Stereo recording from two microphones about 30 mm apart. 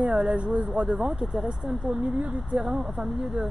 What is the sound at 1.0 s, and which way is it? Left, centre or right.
Speech, right.